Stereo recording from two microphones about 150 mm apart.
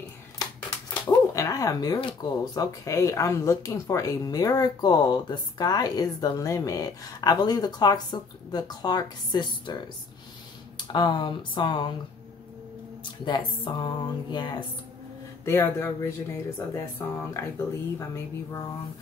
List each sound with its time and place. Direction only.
1.0 s speech: 20° left (ahead or behind)
10.9 s speech: 30° left (ahead or behind)
13.0 s speech: 30° left (ahead or behind)
15.4 s speech: 20° left (ahead or behind)